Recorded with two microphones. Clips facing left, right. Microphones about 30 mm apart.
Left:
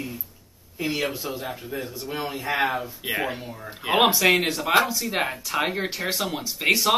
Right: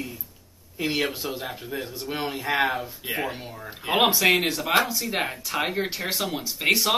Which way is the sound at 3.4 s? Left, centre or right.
Centre.